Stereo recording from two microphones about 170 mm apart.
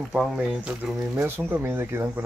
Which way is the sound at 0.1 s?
5° right (ahead or behind).